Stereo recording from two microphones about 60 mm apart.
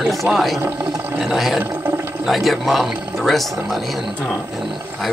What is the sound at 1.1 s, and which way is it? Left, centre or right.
Speech, centre.